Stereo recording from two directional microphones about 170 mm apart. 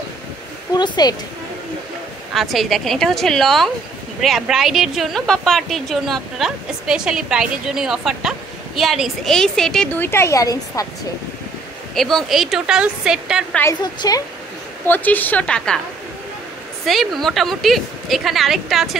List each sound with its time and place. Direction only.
0.7 s a woman's voice: 25° left (ahead or behind)
2.3 s a woman's voice: centre (ahead or behind); by 10.9 s 20° left (ahead or behind)
11.9 s a woman's voice: centre (ahead or behind)
13.6 s a woman's voice: 20° left (ahead or behind)
16.8 s a woman's voice: centre (ahead or behind)